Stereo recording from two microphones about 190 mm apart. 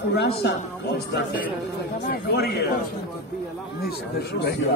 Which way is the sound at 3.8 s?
60° left (ahead or behind).